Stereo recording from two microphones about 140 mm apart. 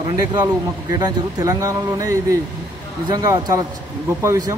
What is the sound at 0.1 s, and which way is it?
Speech, 30° right (ahead or behind).